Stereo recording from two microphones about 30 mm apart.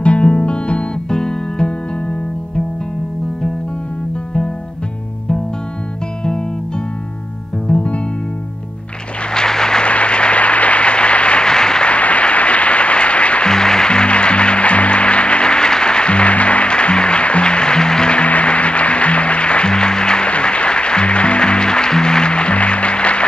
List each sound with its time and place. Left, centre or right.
0.0 s music: left
1.0 s music: left
7.7 s music: left
9.3 s vehicle: left
9.8 s a sound: left
11.4 s applause: left
11.8 s applause: left
13.5 s music: left
18.1 s music: left
19.7 s music: left
20.2 s music: left